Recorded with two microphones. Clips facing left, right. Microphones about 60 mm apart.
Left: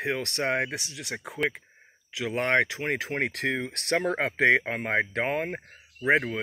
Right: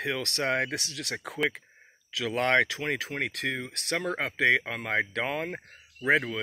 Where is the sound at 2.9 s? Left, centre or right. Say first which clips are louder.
Left 3 dB; left.